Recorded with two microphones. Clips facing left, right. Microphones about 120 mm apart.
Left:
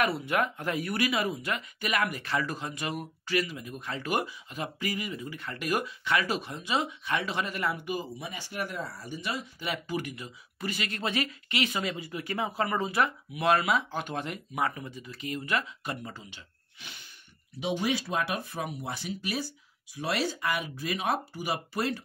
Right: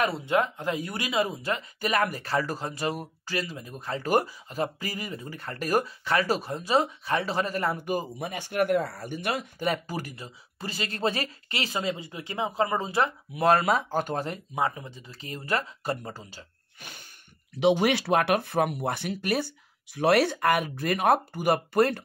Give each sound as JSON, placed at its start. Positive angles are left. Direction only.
{"t": 0.0, "sound": "speech", "side_deg": -25}
{"t": 9.7, "sound": "speech", "side_deg": -40}
{"t": 17.6, "sound": "speech", "side_deg": -75}